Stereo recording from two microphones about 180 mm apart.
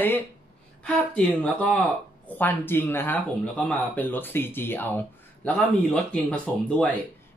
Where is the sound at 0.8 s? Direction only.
5° left (ahead or behind).